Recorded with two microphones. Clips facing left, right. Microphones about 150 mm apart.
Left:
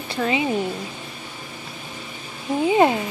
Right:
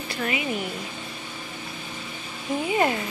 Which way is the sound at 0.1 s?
25° left (ahead or behind).